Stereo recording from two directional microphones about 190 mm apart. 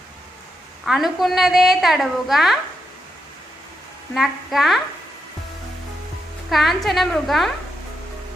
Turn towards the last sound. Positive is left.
turn(degrees=0)  # may be behind; listen again after turning